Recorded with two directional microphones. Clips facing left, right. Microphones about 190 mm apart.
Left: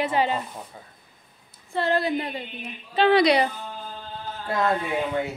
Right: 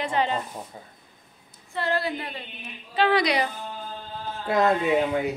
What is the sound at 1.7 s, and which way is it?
A woman's voice, 20° left (ahead or behind).